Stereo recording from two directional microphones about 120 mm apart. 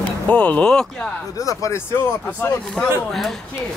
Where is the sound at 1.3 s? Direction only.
25° left (ahead or behind).